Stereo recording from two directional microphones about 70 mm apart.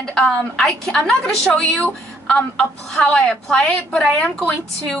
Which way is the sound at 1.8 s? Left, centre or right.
Centre.